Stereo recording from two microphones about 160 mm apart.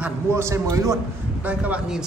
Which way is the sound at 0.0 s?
15° right (ahead or behind).